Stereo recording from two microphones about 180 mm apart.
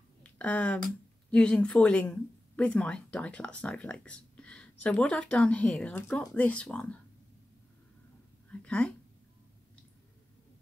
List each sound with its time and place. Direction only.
0.2 s a sound: 10° left (ahead or behind)
0.8 s speech: 5° left (ahead or behind)
8.5 s speech: 5° left (ahead or behind)